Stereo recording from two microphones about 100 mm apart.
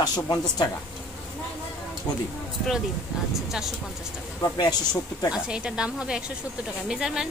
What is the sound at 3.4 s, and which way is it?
Speech, centre (ahead or behind).